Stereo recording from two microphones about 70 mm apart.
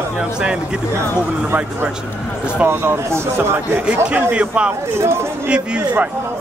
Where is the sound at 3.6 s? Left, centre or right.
Right.